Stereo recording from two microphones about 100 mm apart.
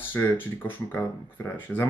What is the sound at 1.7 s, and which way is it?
Speech, 5° left (ahead or behind).